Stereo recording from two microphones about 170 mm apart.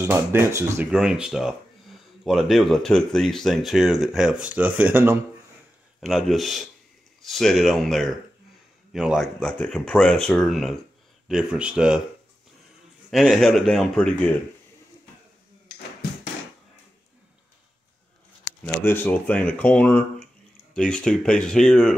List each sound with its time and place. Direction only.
0.0 s speech: 15° right (ahead or behind)
0.9 s speech: 5° right (ahead or behind)
5.9 s speech: centre (ahead or behind)
13.1 s speech: centre (ahead or behind)
18.9 s speech: 10° left (ahead or behind)